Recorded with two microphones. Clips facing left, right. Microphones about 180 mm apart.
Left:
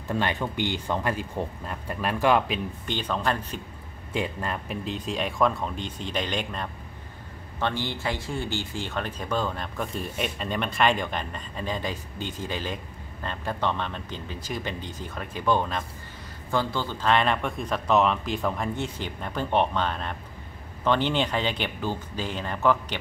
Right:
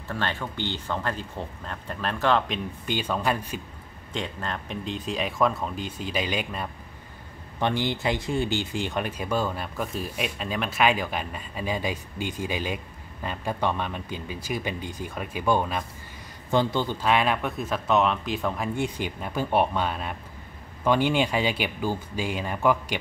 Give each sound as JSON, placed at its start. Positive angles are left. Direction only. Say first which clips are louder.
{"t": 0.1, "sound": "speech", "louder": "left 3 dB", "side_deg": 15}
{"t": 2.9, "sound": "speech", "louder": "right 1 dB", "side_deg": -10}
{"t": 4.1, "sound": "a man's voice", "louder": "left 3 dB", "side_deg": 5}
{"t": 17.1, "sound": "speech", "louder": "left 1 dB", "side_deg": -5}
{"t": 18.8, "sound": "speech", "louder": "right 3 dB", "side_deg": -10}